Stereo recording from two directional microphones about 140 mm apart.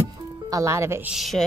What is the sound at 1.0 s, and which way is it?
Speech, centre (ahead or behind).